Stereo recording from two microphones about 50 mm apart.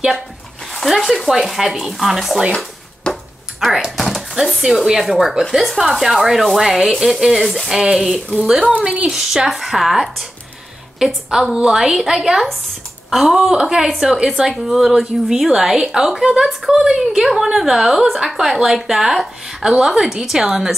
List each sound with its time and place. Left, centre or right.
0.8 s speech: centre
3.1 s a sound: centre
3.6 s speech: centre
7.7 s a woman's voice: centre
8.8 s a woman's voice: centre
9.1 s a woman's voice: centre